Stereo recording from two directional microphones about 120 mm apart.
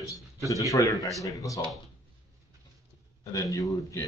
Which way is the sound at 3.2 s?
30° left (ahead or behind).